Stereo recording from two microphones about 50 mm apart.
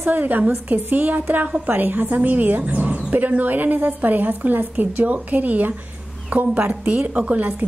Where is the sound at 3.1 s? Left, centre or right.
Right.